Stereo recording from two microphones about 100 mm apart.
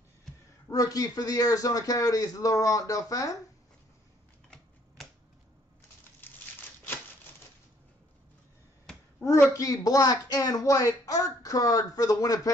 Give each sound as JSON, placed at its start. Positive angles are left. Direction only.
{"t": 0.7, "sound": "a woman's voice", "side_deg": 35}
{"t": 9.2, "sound": "a woman's voice", "side_deg": 30}